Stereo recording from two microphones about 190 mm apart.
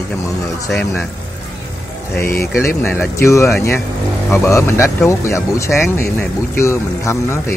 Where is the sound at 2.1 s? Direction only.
15° left (ahead or behind).